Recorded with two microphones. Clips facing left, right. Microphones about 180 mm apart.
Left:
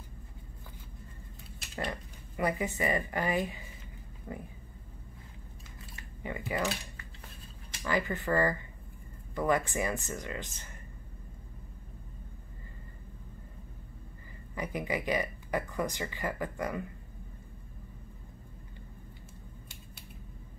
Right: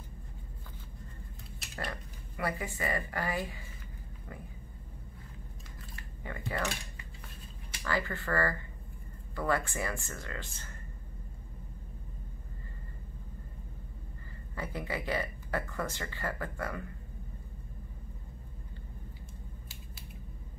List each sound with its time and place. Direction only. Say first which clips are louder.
1.8 s speech: left 3 dB; 20° left (ahead or behind)
6.2 s speech: left 3 dB; 15° left (ahead or behind)
6.5 s speech: left 3 dB; 5° left (ahead or behind)
7.8 s speech: left 3 dB; 20° left (ahead or behind)
14.5 s speech: left 3 dB; 15° left (ahead or behind)